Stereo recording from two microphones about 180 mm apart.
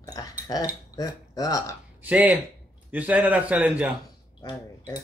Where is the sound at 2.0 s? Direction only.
10° right (ahead or behind).